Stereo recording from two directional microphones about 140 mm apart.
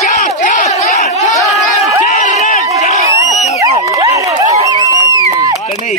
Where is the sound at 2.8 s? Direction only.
55° left (ahead or behind).